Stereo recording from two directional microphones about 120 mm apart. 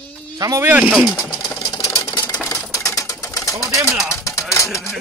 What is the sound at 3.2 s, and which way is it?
Bird, 30° left (ahead or behind).